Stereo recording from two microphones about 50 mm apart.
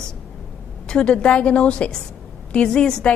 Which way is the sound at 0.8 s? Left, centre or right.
Centre.